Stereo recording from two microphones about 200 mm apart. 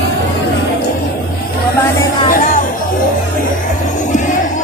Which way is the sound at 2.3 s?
45° left (ahead or behind).